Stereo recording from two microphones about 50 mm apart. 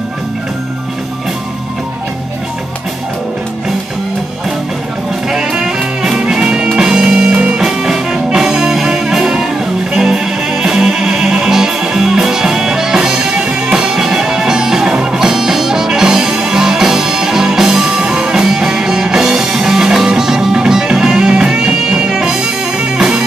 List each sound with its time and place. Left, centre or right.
5.3 s music: centre
7.6 s music: centre